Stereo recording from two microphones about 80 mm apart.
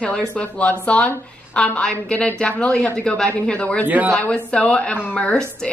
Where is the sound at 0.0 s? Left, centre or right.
Centre.